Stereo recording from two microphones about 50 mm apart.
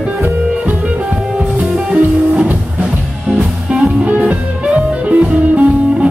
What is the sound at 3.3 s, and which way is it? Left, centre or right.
Music, right.